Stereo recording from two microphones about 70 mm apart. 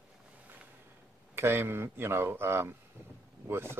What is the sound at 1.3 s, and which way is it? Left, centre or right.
Speech, right.